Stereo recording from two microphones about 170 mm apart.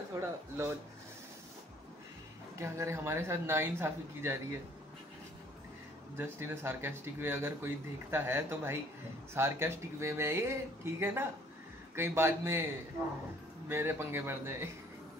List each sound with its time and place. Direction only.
0.1 s speech: 15° right (ahead or behind)
2.6 s speech: 15° right (ahead or behind)
6.1 s speech: 15° right (ahead or behind)
13.7 s speech: 15° right (ahead or behind)